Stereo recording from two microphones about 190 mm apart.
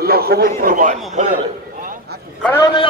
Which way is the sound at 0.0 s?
55° right (ahead or behind).